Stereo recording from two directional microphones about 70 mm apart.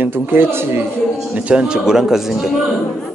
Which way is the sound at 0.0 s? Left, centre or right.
Right.